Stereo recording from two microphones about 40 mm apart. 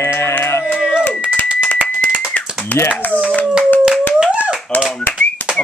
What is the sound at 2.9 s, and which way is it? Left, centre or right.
Clapping, left.